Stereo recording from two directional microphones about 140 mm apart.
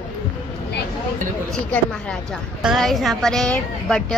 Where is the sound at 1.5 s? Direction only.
5° left (ahead or behind).